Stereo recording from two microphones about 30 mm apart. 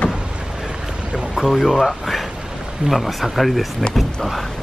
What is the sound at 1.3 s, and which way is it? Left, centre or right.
Speech, centre.